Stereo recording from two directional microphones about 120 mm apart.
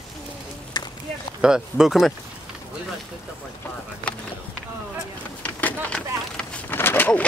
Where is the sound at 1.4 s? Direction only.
5° right (ahead or behind).